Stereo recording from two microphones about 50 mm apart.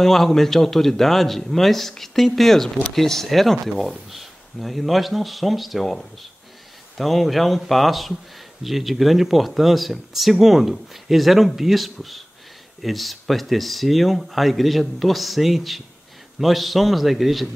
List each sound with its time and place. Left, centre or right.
0.0 s speech: centre